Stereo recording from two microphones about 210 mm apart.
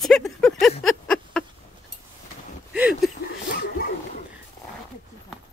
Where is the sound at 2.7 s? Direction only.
5° right (ahead or behind).